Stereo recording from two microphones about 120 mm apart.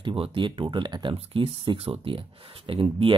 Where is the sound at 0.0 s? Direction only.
45° right (ahead or behind).